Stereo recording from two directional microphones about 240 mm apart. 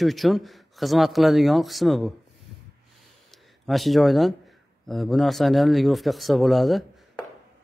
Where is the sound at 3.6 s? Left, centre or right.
Centre.